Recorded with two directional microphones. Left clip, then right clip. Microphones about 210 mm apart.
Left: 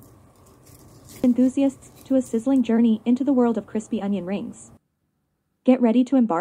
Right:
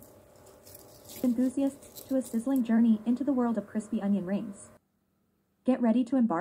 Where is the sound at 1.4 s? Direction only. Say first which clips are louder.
Left 9 dB; 35° left (ahead or behind).